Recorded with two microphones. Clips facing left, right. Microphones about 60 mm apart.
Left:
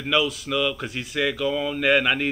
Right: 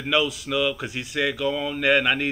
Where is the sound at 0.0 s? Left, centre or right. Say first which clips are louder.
Even; centre.